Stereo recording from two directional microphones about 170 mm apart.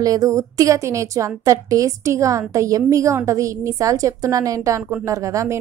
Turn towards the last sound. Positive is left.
turn(degrees=-20)  # may be behind; listen again after turning